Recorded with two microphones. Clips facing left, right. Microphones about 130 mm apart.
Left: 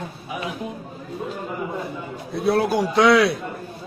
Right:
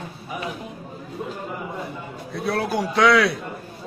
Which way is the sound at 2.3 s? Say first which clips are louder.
Left 5 dB; 20° left (ahead or behind).